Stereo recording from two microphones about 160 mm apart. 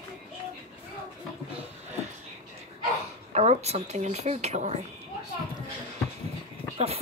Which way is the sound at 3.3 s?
45° right (ahead or behind).